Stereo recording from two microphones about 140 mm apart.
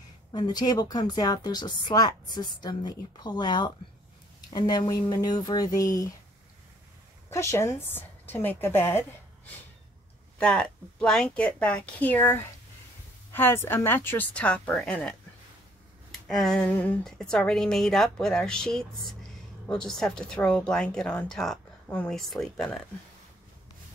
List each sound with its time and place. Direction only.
0.3 s a woman's voice: 30° left (ahead or behind)
7.2 s a woman's voice: 20° left (ahead or behind)
10.4 s a woman's voice: 5° left (ahead or behind)